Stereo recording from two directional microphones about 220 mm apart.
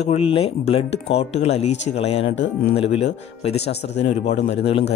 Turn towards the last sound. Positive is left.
turn(degrees=30)  # may be behind; listen again after turning